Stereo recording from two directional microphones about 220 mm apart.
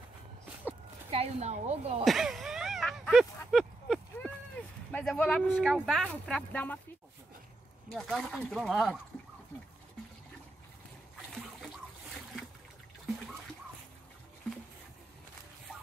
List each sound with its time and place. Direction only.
1.1 s speech: 30° right (ahead or behind)
2.0 s a sound: centre (ahead or behind)
4.9 s speech: 5° left (ahead or behind)
7.9 s speech: centre (ahead or behind)